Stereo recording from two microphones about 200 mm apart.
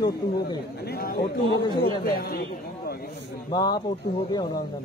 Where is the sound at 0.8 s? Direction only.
50° left (ahead or behind).